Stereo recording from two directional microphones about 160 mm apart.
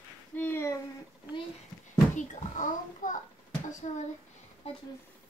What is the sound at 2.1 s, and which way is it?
A child's voice, 50° left (ahead or behind).